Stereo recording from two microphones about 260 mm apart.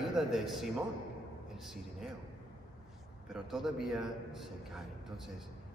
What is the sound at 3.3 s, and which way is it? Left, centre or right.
A man's voice, centre.